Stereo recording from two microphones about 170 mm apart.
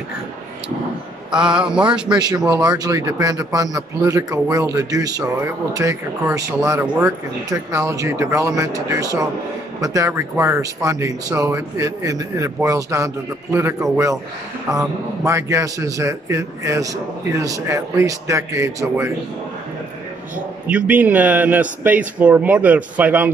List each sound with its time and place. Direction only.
1.3 s speech: 5° right (ahead or behind)
2.1 s a man's voice: 25° right (ahead or behind)
20.6 s a man's voice: 10° right (ahead or behind)